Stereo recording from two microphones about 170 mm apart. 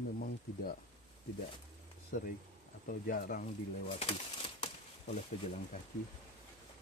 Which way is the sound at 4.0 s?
35° left (ahead or behind).